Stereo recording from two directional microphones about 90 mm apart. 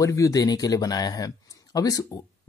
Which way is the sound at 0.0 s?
35° left (ahead or behind).